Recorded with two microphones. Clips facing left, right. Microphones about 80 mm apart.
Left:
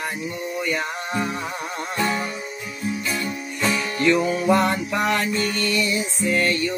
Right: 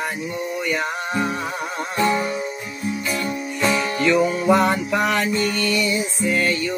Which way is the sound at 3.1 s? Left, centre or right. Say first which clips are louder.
Right 2 dB; right.